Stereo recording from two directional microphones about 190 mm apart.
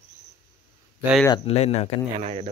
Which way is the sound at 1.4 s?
35° left (ahead or behind).